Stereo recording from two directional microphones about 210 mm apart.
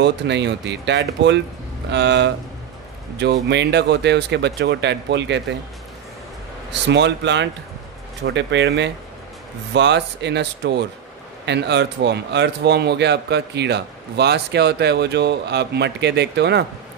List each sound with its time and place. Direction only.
0.0 s speech: 55° right (ahead or behind)
3.4 s speech: 55° right (ahead or behind)
6.7 s speech: 55° right (ahead or behind)